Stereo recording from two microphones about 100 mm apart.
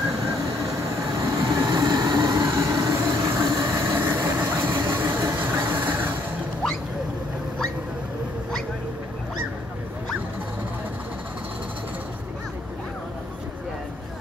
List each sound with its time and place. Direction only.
1.1 s train: 40° right (ahead or behind); by 5.2 s 25° right (ahead or behind)
5.4 s vehicle: 15° right (ahead or behind)